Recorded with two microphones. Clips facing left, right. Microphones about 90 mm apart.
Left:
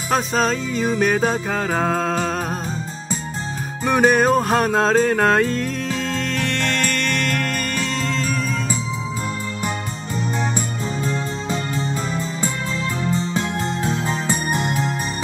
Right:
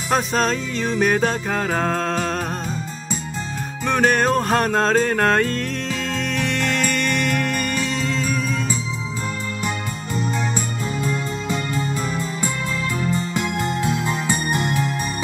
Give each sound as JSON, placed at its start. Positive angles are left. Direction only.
{"t": 0.1, "sound": "music", "side_deg": 0}
{"t": 3.8, "sound": "music", "side_deg": 5}
{"t": 11.1, "sound": "music", "side_deg": 35}
{"t": 13.2, "sound": "music", "side_deg": 30}